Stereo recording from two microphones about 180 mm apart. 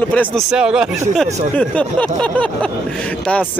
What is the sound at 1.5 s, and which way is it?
Speech, 5° left (ahead or behind).